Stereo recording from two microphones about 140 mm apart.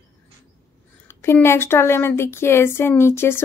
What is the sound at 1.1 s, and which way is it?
Speech, 15° left (ahead or behind).